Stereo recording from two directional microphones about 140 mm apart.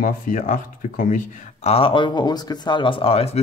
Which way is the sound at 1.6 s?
45° left (ahead or behind).